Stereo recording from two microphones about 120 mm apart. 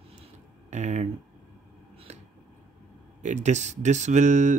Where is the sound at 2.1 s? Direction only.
65° right (ahead or behind).